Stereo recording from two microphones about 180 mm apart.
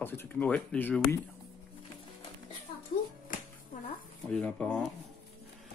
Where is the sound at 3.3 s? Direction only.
50° left (ahead or behind).